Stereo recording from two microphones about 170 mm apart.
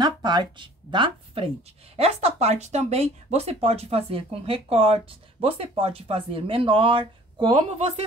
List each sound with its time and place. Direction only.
0.0 s speech: 25° right (ahead or behind)